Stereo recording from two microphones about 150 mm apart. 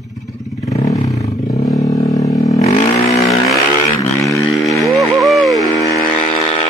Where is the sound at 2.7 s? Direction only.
45° left (ahead or behind).